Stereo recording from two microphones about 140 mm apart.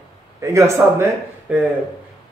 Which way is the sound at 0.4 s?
20° right (ahead or behind).